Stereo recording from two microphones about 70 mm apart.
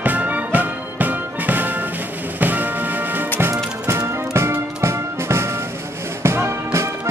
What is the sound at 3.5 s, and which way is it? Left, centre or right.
Music, right.